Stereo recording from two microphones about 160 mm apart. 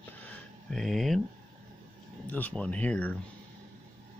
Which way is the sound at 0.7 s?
Centre (ahead or behind).